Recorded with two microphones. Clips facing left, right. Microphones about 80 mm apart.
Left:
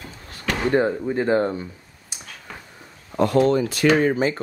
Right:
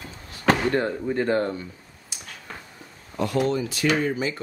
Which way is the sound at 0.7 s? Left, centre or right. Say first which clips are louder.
Left 4 dB; centre.